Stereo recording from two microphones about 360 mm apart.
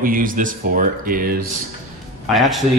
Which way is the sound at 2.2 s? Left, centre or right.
Centre.